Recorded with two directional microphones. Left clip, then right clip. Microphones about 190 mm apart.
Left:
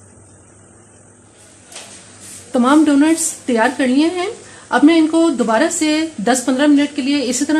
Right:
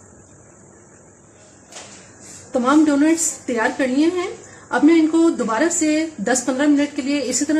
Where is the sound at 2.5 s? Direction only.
45° left (ahead or behind).